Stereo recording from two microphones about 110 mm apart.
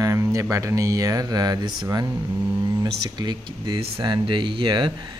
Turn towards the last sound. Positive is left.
turn(degrees=-45)  # may be behind; listen again after turning